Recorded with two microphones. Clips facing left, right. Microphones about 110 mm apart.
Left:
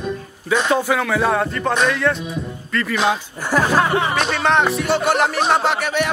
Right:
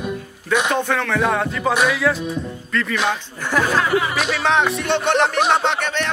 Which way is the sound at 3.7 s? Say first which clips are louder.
Left 2 dB; 30° left (ahead or behind).